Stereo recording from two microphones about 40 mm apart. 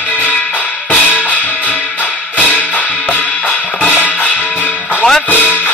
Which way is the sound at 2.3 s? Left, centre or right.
Left.